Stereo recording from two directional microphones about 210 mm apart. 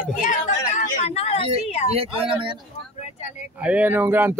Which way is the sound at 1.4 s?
30° right (ahead or behind).